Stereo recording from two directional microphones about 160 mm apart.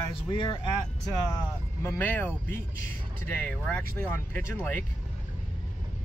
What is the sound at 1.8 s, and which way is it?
Speech, 10° left (ahead or behind).